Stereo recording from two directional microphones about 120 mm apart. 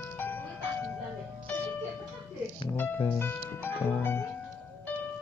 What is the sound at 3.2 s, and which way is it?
Music, 20° left (ahead or behind).